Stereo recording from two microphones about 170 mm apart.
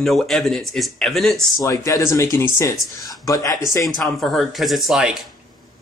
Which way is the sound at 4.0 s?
Centre (ahead or behind).